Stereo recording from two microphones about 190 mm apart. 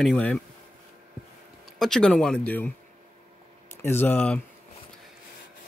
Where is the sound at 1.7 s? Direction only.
Centre (ahead or behind).